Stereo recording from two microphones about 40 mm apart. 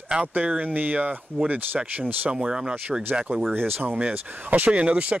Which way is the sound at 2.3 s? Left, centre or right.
Right.